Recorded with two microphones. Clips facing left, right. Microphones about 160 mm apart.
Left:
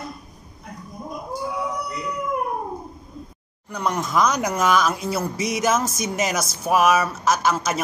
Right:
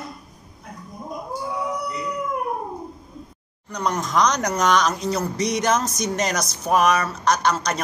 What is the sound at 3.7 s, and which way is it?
A woman's voice, 5° left (ahead or behind).